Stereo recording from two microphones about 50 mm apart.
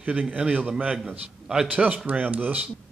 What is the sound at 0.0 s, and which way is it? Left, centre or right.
Speech, right.